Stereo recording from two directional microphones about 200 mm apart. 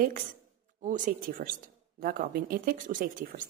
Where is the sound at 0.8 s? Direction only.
40° right (ahead or behind).